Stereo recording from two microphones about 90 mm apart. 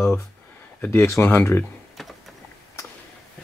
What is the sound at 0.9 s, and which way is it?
Speech, 30° left (ahead or behind).